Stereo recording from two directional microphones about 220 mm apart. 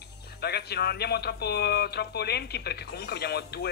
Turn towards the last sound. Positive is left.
turn(degrees=45)  # may be behind; listen again after turning